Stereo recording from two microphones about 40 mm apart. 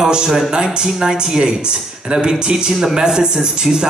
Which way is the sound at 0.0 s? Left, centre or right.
Centre.